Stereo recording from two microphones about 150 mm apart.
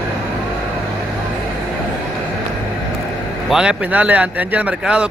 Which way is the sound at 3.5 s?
5° right (ahead or behind).